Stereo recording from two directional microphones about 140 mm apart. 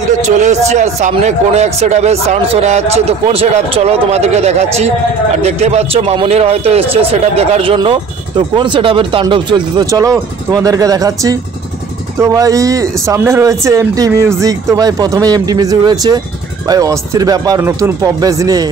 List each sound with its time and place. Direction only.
0.4 s speech: 55° right (ahead or behind); by 18.7 s 25° right (ahead or behind)